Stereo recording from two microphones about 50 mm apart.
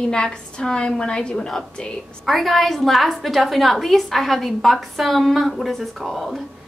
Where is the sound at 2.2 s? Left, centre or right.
Centre.